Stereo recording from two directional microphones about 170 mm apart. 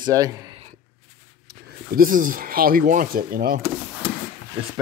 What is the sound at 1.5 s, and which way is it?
Speech, 65° right (ahead or behind).